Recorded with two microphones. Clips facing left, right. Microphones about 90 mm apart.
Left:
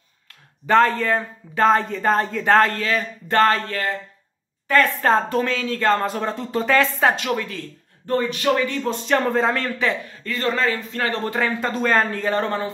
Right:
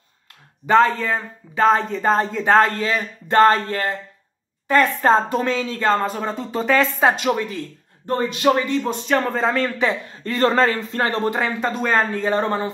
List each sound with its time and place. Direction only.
0.7 s speech: 5° right (ahead or behind)
2.8 s speech: 20° right (ahead or behind)
8.8 s speech: centre (ahead or behind)
10.1 s a man's voice: 35° right (ahead or behind)
11.2 s speech: 15° right (ahead or behind)
11.6 s speech: 5° right (ahead or behind)
12.4 s speech: 20° right (ahead or behind)